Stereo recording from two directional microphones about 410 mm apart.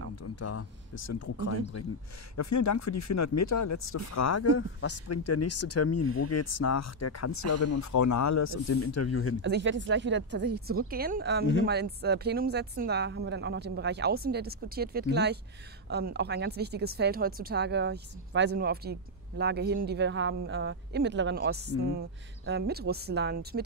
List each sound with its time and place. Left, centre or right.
0.1 s speech: left
9.4 s speech: right